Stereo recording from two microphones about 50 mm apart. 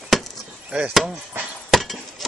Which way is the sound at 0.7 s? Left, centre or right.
Right.